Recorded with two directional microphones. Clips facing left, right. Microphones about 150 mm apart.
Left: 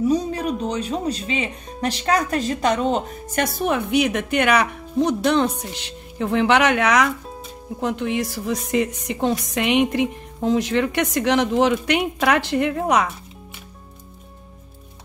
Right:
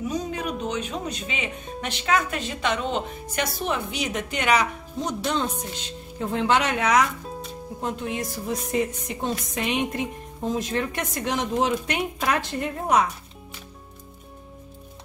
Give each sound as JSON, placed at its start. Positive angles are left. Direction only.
{"t": 0.1, "sound": "a woman's voice", "side_deg": 35}